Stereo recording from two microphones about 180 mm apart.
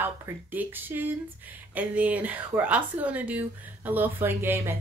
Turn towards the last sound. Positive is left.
turn(degrees=-15)  # may be behind; listen again after turning